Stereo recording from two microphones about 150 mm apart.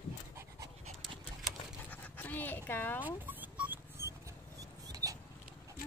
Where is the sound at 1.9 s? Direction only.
10° left (ahead or behind).